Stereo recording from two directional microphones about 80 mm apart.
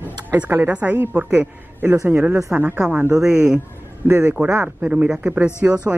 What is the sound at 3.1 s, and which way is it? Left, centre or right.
A woman's voice, centre.